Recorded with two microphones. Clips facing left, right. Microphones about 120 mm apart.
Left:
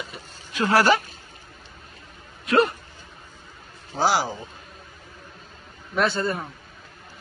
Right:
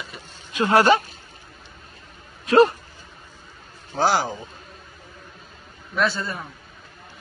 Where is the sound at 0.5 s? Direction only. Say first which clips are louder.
Right 2 dB; 20° right (ahead or behind).